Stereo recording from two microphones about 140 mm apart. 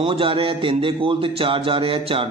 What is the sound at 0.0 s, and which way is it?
Speech, 40° right (ahead or behind).